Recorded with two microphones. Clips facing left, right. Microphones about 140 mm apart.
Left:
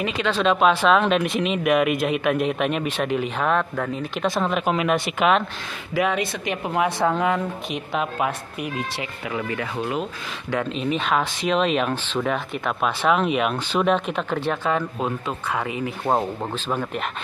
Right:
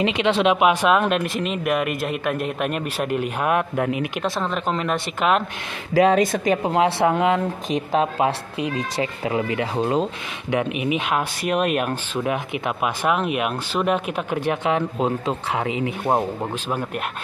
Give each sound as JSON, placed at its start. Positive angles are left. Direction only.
{"t": 0.0, "sound": "speech", "side_deg": -20}
{"t": 4.2, "sound": "speech", "side_deg": 5}
{"t": 5.9, "sound": "speech", "side_deg": -40}
{"t": 6.6, "sound": "speech", "side_deg": -25}
{"t": 7.9, "sound": "speech", "side_deg": -30}
{"t": 10.5, "sound": "speech", "side_deg": -15}
{"t": 16.1, "sound": "speech", "side_deg": -10}